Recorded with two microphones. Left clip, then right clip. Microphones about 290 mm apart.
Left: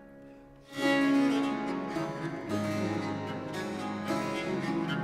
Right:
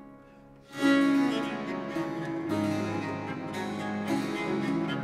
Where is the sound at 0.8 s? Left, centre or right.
Centre.